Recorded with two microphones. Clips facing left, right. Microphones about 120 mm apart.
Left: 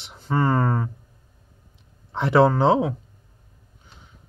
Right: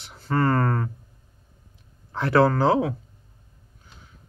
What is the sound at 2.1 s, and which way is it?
Speech, 25° left (ahead or behind).